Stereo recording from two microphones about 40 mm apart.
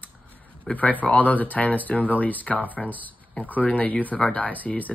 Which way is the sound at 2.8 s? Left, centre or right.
Centre.